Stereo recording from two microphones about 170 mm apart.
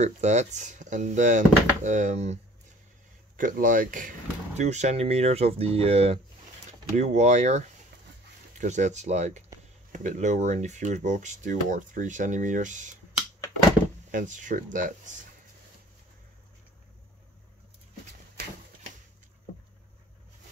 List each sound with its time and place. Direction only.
0.0 s speech: 45° right (ahead or behind)
3.3 s speech: 50° right (ahead or behind)
14.1 s speech: 50° right (ahead or behind)